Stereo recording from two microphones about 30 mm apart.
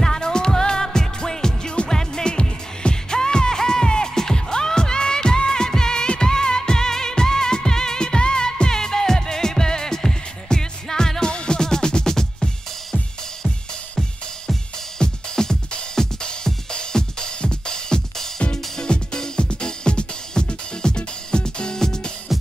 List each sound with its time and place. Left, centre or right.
0.0 s music: left
15.0 s music: left
22.3 s music: centre